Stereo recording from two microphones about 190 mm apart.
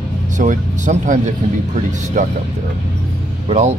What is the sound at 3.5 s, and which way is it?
Speech, 35° right (ahead or behind).